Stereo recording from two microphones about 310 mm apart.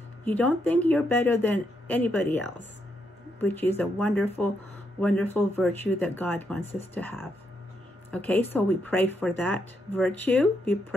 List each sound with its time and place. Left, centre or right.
0.2 s speech: centre